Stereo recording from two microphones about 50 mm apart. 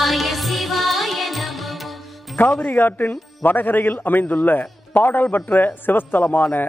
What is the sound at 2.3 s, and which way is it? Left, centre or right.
A man's voice, left.